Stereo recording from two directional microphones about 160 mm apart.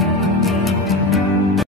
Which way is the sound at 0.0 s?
Centre (ahead or behind).